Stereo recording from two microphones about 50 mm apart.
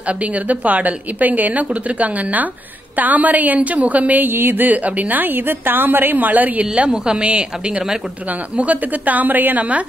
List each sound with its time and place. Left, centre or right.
0.0 s a woman's voice: right